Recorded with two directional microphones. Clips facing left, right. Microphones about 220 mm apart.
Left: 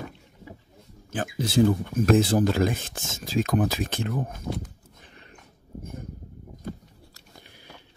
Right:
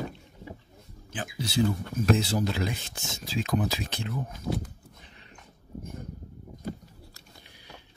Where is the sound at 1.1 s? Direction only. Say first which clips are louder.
Left 6 dB; 45° left (ahead or behind).